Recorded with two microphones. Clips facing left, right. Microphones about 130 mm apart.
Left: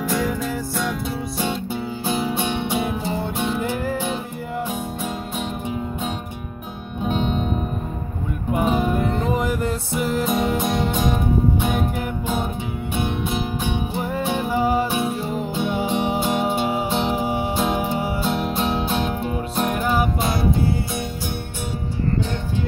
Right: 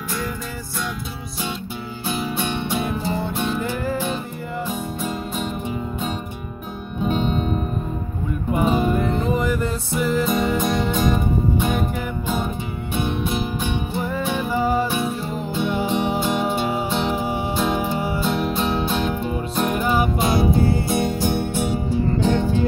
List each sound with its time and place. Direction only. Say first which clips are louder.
2.0 s music: left 1 dB; 25° left (ahead or behind)
7.0 s music: right 1 dB; 10° left (ahead or behind)
8.5 s music: right 1 dB; 10° left (ahead or behind)
13.9 s music: even; 15° left (ahead or behind); by 20.4 s 10° right (ahead or behind)
20.9 s music: right 7 dB; 60° right (ahead or behind)